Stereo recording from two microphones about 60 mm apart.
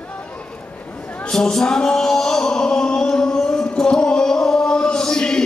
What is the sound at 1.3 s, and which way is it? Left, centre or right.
Music, centre.